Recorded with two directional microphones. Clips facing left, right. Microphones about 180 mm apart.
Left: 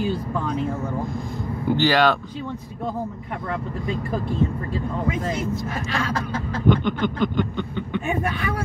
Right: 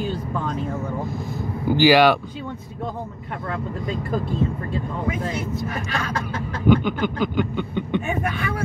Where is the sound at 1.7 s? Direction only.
10° right (ahead or behind).